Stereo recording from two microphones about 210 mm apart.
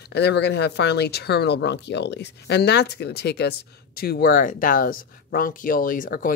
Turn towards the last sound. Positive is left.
turn(degrees=40)  # may be behind; listen again after turning